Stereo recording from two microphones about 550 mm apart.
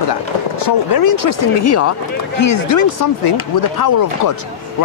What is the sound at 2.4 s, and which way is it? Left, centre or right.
Speech, left.